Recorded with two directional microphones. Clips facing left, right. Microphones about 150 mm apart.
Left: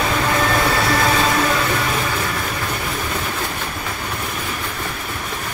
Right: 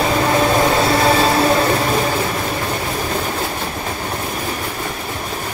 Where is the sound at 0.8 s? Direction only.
30° right (ahead or behind).